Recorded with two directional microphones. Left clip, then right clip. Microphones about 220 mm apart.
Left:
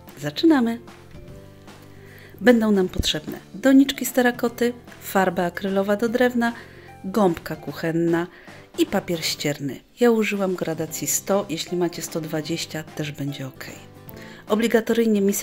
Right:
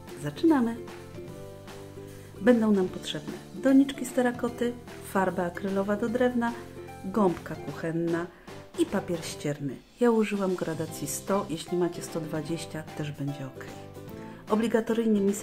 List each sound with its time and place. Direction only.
0.2 s speech: 20° left (ahead or behind)
2.4 s speech: 25° left (ahead or behind)
14.5 s speech: 20° left (ahead or behind)